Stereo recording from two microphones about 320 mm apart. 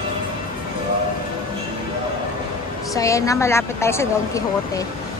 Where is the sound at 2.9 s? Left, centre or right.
Centre.